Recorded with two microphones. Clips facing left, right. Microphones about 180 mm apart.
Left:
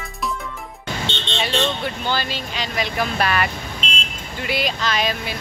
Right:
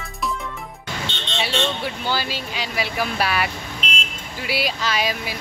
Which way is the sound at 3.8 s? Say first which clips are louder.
Right 1 dB; 25° left (ahead or behind).